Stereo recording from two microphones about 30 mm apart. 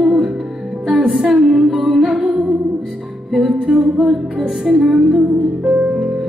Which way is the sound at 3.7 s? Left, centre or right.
Centre.